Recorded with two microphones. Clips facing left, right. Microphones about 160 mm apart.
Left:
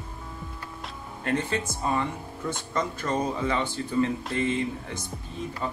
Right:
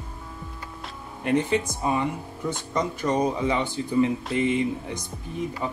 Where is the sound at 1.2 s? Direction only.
15° right (ahead or behind).